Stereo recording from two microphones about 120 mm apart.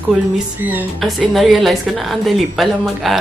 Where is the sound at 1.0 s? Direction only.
Centre (ahead or behind).